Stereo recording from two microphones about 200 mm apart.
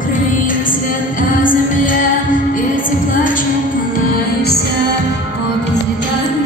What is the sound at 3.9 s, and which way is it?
Music, 55° left (ahead or behind).